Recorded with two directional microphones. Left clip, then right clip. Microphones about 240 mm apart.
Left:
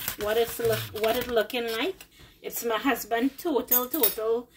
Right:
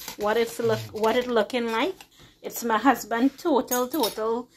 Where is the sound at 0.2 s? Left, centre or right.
Centre.